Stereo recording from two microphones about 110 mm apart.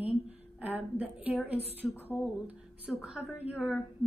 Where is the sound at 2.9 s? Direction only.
5° right (ahead or behind).